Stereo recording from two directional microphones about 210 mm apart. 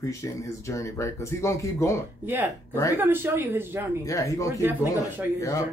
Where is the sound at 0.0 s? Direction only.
15° left (ahead or behind).